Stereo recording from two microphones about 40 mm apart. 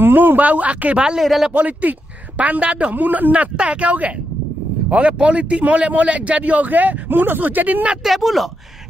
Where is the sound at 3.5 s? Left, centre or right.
Right.